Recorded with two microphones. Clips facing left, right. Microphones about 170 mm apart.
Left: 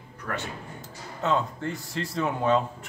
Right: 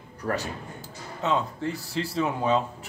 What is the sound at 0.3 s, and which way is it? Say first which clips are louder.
Speech: right 5 dB; 35° right (ahead or behind).